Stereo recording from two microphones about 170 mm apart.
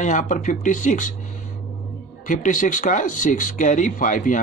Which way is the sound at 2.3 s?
50° left (ahead or behind).